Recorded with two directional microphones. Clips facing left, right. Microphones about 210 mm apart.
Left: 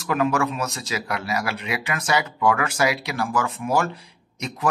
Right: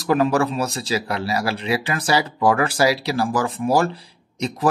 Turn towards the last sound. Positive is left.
turn(degrees=-35)  # may be behind; listen again after turning